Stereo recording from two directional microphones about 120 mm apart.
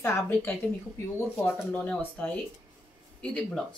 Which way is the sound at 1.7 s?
10° left (ahead or behind).